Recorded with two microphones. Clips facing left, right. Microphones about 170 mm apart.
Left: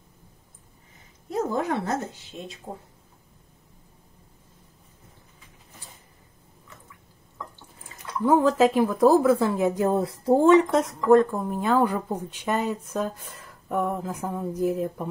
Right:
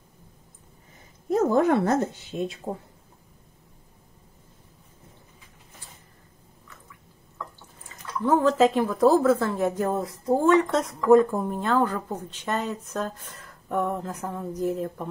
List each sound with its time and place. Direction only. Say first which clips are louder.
1.5 s speech: right 7 dB; 55° right (ahead or behind)
2.7 s speech: right 5 dB; 80° right
8.3 s speech: left 1 dB; 10° left (ahead or behind)
10.2 s speech: left 3 dB; 25° left (ahead or behind)
10.8 s speech: even; centre (ahead or behind)